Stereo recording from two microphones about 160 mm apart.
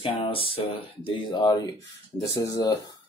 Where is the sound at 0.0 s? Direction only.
35° left (ahead or behind).